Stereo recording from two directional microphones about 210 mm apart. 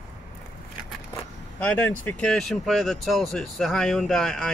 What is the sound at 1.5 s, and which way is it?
Speech, 10° left (ahead or behind).